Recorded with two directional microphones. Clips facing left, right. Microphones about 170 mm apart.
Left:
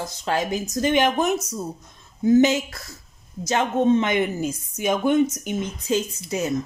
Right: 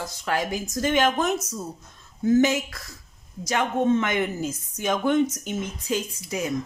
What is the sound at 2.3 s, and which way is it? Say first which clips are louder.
A woman's voice: left 3 dB; 20° left (ahead or behind).